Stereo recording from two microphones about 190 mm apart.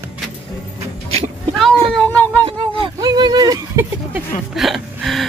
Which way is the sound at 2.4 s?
25° right (ahead or behind).